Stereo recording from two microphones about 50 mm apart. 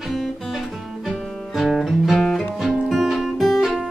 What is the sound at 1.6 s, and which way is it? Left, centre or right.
Music, centre.